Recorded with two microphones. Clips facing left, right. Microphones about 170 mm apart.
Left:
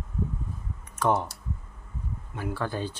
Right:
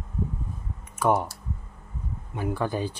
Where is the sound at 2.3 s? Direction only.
20° right (ahead or behind).